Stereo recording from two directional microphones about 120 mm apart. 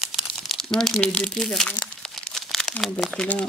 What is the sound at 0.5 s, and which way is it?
Speech, 5° left (ahead or behind).